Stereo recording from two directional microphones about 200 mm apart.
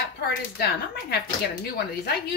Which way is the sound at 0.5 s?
50° left (ahead or behind).